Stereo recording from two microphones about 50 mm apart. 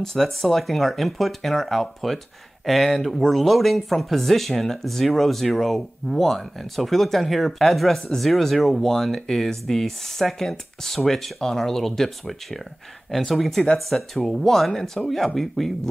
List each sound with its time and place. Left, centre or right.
0.0 s speech: centre